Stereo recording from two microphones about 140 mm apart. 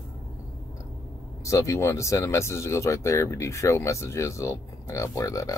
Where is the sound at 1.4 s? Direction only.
20° left (ahead or behind).